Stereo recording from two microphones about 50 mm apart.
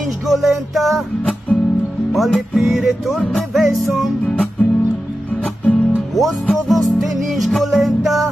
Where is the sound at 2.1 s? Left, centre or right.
Centre.